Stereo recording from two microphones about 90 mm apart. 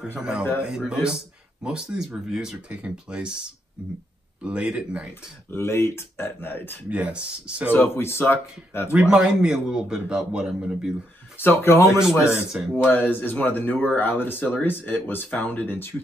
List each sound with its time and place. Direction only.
0.2 s a man's voice: 10° right (ahead or behind)
4.4 s a man's voice: 15° right (ahead or behind)
5.5 s speech: 30° left (ahead or behind)
6.9 s a man's voice: 15° right (ahead or behind)
7.7 s speech: 25° left (ahead or behind)
8.9 s a man's voice: 10° right (ahead or behind)
11.3 s speech: 25° left (ahead or behind)
12.3 s a man's voice: 15° right (ahead or behind)
12.8 s speech: 20° left (ahead or behind)